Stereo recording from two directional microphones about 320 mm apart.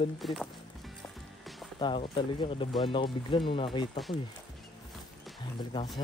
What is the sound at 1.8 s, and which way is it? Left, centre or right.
Speech, centre.